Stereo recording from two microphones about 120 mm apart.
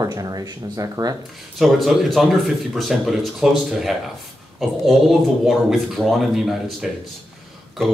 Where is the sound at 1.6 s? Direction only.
Centre (ahead or behind).